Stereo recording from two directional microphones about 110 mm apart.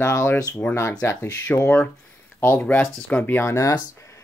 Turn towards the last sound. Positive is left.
turn(degrees=30)  # may be behind; listen again after turning